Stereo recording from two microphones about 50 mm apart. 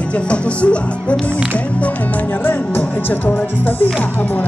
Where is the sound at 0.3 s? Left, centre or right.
Left.